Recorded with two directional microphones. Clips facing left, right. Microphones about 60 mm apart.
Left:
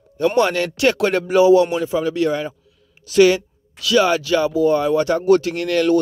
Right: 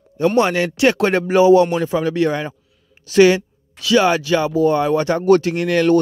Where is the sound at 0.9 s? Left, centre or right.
Right.